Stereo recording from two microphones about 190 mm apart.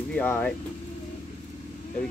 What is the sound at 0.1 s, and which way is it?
Speech, 10° left (ahead or behind).